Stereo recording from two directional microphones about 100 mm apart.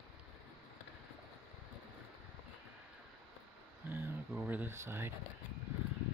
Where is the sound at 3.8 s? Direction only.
20° right (ahead or behind).